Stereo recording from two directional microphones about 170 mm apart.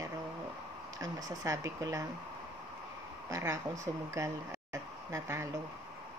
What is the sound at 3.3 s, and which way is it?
Speech, 20° right (ahead or behind).